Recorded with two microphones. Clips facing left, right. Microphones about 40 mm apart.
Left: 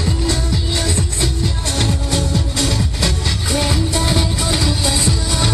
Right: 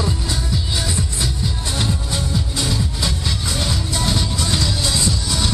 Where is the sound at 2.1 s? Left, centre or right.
Centre.